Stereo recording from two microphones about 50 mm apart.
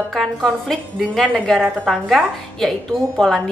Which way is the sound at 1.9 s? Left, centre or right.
Centre.